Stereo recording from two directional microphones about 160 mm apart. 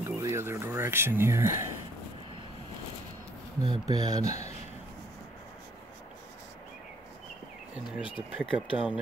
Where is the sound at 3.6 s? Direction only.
25° right (ahead or behind).